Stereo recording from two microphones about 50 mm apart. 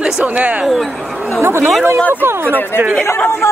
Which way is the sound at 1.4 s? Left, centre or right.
Right.